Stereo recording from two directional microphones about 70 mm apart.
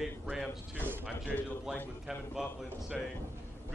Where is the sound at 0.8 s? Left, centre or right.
Right.